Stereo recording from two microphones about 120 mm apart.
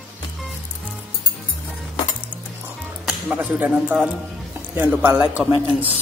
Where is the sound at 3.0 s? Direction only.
10° right (ahead or behind).